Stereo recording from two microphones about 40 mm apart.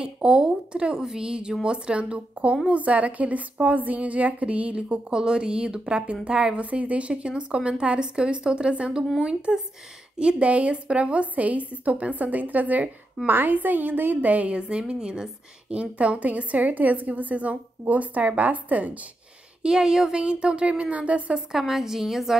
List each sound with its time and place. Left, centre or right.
0.0 s a woman's voice: right
6.6 s a woman's voice: right
13.2 s speech: centre
13.5 s a woman's voice: right
14.3 s a woman's voice: right
14.7 s speech: right
15.7 s a woman's voice: right
19.6 s a woman's voice: centre; by 21.4 s right
21.5 s a woman's voice: centre